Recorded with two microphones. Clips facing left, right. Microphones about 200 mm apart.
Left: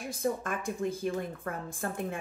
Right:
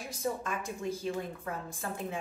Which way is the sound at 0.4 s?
55° left (ahead or behind).